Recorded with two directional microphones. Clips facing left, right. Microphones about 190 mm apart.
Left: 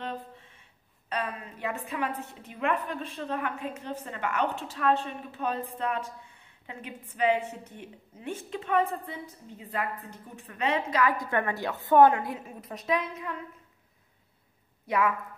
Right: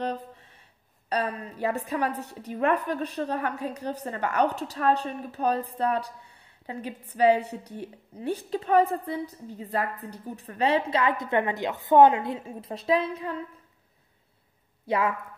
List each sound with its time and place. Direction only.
0.0 s a sound: 40° right (ahead or behind)
1.0 s a woman's voice: 40° right (ahead or behind)
14.9 s a woman's voice: 30° right (ahead or behind)